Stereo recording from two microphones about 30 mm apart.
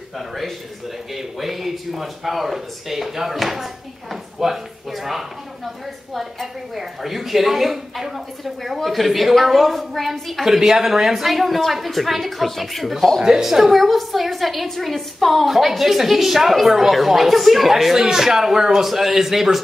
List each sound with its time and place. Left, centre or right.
1.1 s speech: centre
6.4 s a woman's voice: centre
10.4 s a woman's voice: centre
13.2 s a woman's voice: centre